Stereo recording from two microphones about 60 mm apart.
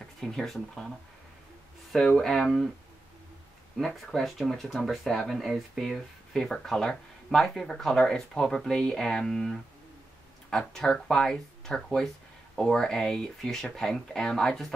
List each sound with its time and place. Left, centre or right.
0.2 s speech: centre
2.1 s speech: centre
3.7 s speech: centre
10.7 s speech: centre